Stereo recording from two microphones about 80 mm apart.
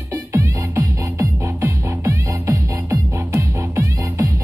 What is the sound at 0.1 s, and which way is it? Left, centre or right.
Music, right.